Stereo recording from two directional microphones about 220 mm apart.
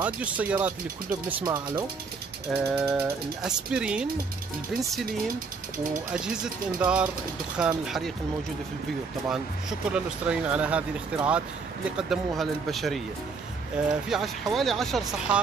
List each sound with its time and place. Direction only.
0.0 s speech: 5° right (ahead or behind)
1.4 s speech: 20° right (ahead or behind)
2.5 s speech: 5° right (ahead or behind)
6.1 s speech: 5° right (ahead or behind)
9.3 s speech: 5° right (ahead or behind)
14.0 s speech: centre (ahead or behind)